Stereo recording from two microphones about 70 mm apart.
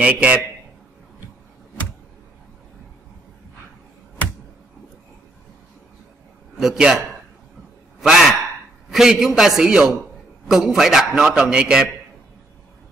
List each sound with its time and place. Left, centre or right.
0.0 s a man's voice: centre
6.5 s a man's voice: centre
8.0 s a man's voice: centre